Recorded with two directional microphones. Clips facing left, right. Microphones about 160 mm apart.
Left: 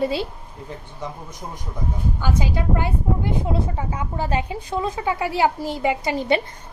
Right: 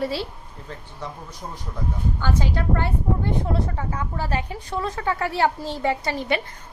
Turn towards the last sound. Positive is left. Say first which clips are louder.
# left 4 dB
turn(degrees=20)  # may be behind; listen again after turning